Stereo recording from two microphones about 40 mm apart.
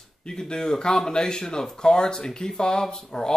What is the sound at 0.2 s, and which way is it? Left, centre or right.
Speech, centre.